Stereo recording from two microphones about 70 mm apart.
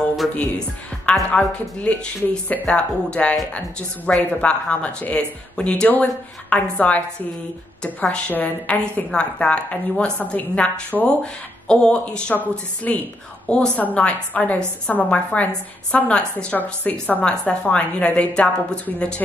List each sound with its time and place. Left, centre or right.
0.3 s a woman's voice: centre
8.3 s a woman's voice: left
10.9 s a woman's voice: centre